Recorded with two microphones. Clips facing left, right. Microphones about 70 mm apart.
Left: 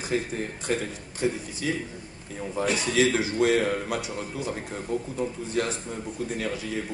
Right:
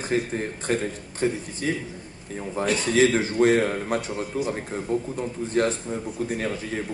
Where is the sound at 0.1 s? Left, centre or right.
Right.